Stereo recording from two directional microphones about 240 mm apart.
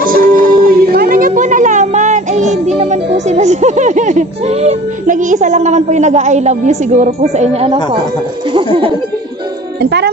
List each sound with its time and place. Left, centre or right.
0.0 s music: right
9.8 s speech: right